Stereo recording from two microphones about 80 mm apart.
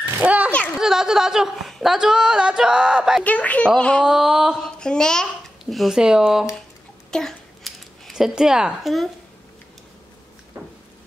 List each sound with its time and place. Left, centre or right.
0.0 s a sound: centre
0.7 s speech: centre
3.3 s speech: centre
4.0 s speech: centre
4.6 s a child's voice: centre
7.1 s a sound: centre